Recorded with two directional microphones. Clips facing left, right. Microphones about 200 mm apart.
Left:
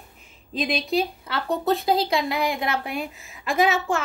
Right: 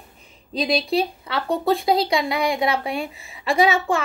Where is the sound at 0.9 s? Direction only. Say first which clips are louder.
Right 2 dB; centre (ahead or behind).